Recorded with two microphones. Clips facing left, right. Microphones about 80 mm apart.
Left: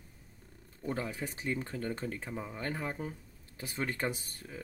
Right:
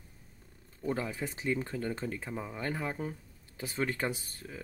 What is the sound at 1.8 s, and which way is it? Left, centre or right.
Speech, centre.